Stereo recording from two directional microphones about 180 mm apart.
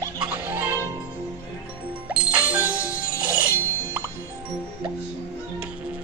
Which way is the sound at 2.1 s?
5° right (ahead or behind).